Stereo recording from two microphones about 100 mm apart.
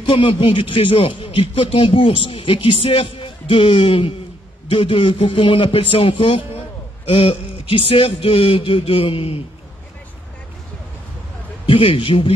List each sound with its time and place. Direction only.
0.0 s speech: 60° left (ahead or behind)
11.6 s speech: 65° left (ahead or behind)